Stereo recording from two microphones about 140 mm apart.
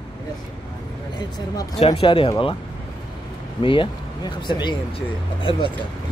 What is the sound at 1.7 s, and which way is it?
Speech, 50° left (ahead or behind).